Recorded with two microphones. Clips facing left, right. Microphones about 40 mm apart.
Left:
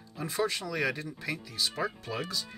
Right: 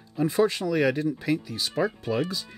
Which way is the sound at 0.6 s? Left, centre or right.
Centre.